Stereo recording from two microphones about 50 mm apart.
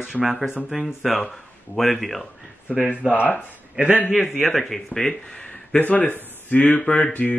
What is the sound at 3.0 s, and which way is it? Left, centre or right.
Speech, right.